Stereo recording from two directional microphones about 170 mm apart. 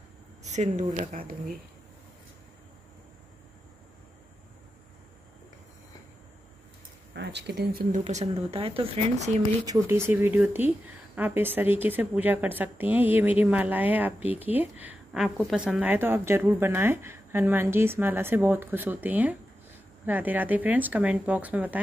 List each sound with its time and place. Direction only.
0.4 s speech: 45° right (ahead or behind)
7.2 s speech: 80° right
7.9 s speech: 40° right (ahead or behind)
9.7 s a woman's voice: 15° right (ahead or behind)